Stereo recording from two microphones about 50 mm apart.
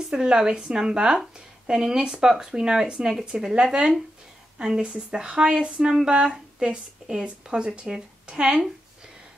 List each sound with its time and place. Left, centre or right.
0.1 s speech: centre